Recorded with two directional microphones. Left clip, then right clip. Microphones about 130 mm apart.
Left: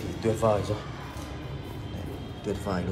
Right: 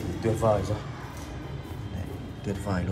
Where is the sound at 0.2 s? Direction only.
35° left (ahead or behind).